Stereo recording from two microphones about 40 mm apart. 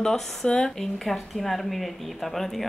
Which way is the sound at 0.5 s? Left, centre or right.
Left.